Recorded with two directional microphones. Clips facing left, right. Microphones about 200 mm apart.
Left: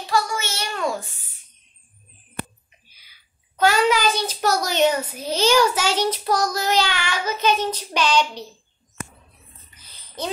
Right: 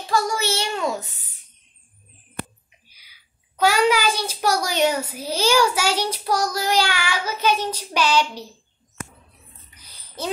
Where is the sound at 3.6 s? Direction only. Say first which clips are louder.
Even; 10° right (ahead or behind).